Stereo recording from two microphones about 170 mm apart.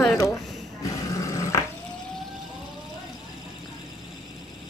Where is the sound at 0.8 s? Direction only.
20° left (ahead or behind).